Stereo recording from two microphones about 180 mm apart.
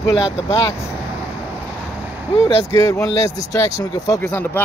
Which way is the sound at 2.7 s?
15° left (ahead or behind).